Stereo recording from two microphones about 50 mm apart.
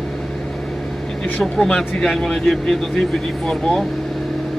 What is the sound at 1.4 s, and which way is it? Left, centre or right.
Speech, centre.